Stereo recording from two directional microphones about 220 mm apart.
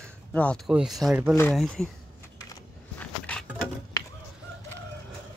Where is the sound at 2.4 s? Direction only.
15° left (ahead or behind).